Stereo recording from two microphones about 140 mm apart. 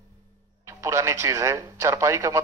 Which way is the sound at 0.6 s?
20° right (ahead or behind).